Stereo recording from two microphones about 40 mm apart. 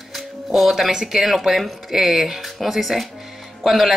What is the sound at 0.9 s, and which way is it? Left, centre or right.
Speech, centre.